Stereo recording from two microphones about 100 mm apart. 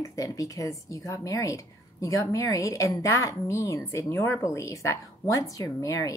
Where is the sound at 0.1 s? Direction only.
35° left (ahead or behind).